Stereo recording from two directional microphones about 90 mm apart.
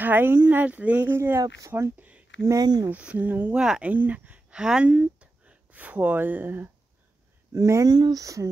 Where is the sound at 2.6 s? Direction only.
50° right (ahead or behind).